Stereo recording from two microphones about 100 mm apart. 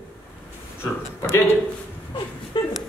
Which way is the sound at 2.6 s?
50° left (ahead or behind).